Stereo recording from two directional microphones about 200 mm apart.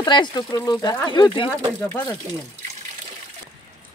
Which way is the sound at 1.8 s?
10° left (ahead or behind).